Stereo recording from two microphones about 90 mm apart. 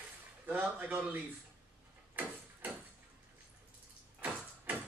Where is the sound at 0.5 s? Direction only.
20° right (ahead or behind).